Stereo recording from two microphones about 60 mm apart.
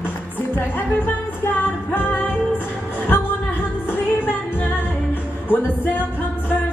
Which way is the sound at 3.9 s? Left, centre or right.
Left.